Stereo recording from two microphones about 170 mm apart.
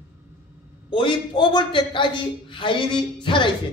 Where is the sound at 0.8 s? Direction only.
30° left (ahead or behind).